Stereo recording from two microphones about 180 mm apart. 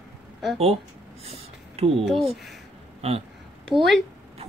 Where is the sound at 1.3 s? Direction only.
35° right (ahead or behind).